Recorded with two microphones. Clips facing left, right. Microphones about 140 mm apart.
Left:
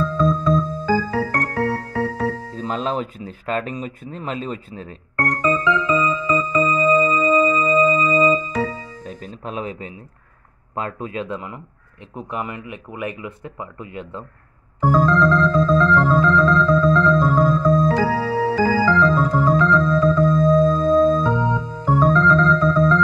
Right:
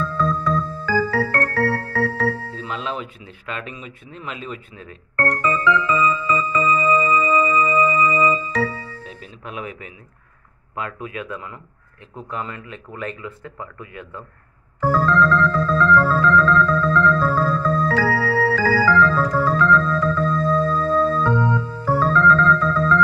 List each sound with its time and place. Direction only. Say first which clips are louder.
0.0 s music: left 3 dB; 15° left (ahead or behind)
2.5 s speech: left 5 dB; 40° left (ahead or behind)
5.1 s music: left 1 dB; 15° left (ahead or behind)
8.9 s music: left 4 dB; 40° left (ahead or behind)
10.7 s speech: left 3 dB; 30° left (ahead or behind)
14.8 s organ: left 1 dB; 15° left (ahead or behind)